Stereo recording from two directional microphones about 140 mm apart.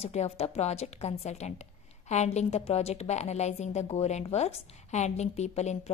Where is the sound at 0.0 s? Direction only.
50° left (ahead or behind).